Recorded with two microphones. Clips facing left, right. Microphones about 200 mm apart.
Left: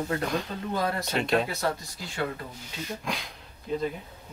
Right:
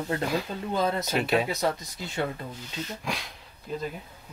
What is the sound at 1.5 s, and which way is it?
Speech, 20° right (ahead or behind).